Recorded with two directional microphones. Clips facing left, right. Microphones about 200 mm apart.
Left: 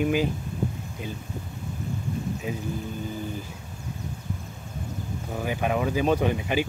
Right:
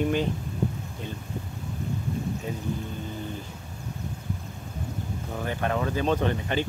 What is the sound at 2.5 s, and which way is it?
Speech, 10° left (ahead or behind).